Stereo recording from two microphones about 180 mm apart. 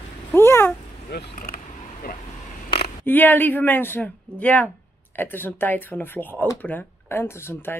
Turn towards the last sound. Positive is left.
turn(degrees=15)  # may be behind; listen again after turning